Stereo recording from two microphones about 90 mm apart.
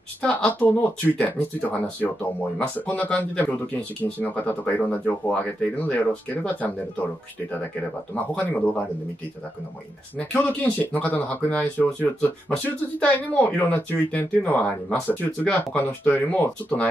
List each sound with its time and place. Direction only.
0.2 s speech: 15° left (ahead or behind)
8.4 s speech: 20° left (ahead or behind)
10.1 s speech: 15° left (ahead or behind)